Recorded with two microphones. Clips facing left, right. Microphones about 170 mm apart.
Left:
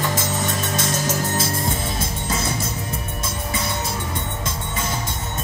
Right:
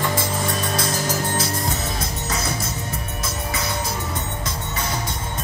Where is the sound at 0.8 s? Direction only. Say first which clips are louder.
Even; 25° left (ahead or behind).